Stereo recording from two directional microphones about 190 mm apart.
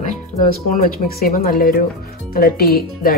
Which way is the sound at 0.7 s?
50° left (ahead or behind).